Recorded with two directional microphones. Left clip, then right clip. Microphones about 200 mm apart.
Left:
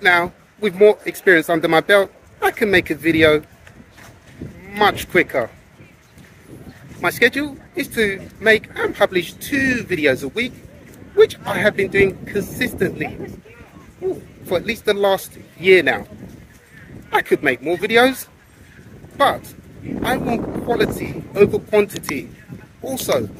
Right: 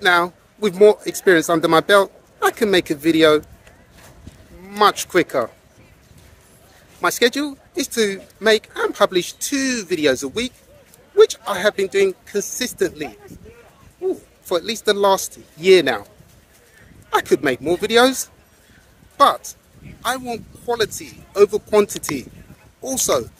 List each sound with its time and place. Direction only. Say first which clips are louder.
0.0 s speech: left 1 dB; 15° right (ahead or behind)
4.6 s speech: right 1 dB; 15° right (ahead or behind)
7.0 s speech: left 1 dB; 15° right (ahead or behind)
14.5 s speech: even; 15° right (ahead or behind)
17.1 s speech: left 1 dB; 15° right (ahead or behind)